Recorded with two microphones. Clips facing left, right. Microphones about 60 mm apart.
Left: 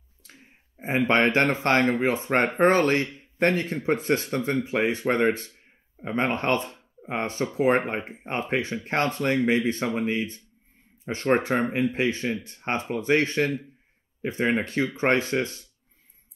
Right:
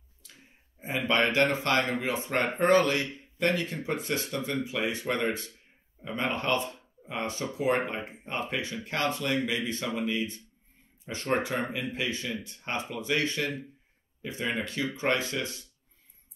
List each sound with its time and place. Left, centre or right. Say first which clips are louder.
0.2 s speech: left 4 dB; left